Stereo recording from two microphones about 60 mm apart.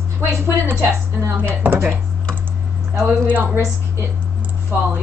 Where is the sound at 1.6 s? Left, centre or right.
Right.